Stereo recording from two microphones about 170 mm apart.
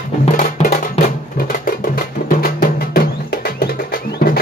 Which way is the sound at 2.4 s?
60° left (ahead or behind).